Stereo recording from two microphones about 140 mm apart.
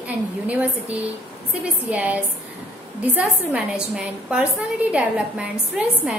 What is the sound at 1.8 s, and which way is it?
A woman's voice, 10° right (ahead or behind).